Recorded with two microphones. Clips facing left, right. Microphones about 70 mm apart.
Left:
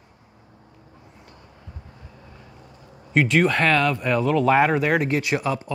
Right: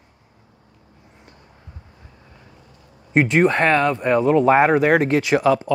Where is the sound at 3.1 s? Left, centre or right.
Right.